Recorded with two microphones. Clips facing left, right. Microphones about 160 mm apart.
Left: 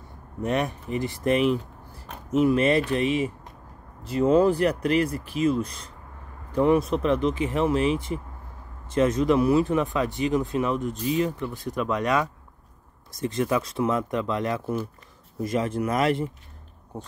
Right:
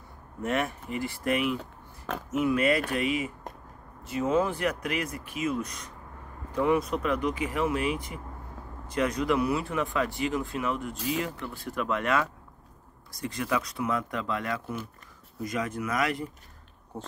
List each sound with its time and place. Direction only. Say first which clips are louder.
0.4 s speech: left 3 dB; 20° left (ahead or behind)